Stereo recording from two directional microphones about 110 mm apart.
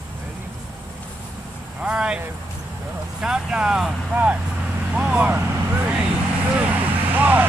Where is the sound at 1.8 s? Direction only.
10° right (ahead or behind).